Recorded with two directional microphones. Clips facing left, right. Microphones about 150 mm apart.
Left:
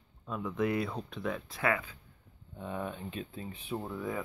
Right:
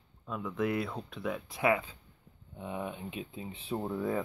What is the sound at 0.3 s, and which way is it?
Speech, centre (ahead or behind).